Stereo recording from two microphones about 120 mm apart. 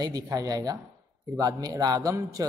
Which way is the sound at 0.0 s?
30° right (ahead or behind).